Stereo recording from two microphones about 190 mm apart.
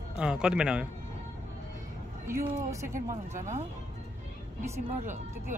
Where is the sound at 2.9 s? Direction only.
40° right (ahead or behind).